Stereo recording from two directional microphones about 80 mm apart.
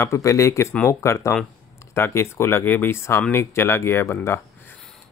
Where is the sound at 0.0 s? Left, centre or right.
Left.